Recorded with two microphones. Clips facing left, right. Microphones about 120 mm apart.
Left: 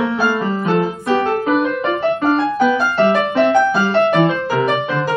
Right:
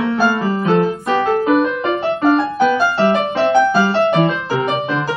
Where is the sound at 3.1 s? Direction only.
25° right (ahead or behind).